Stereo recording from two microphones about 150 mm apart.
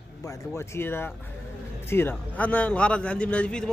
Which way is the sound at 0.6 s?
15° left (ahead or behind).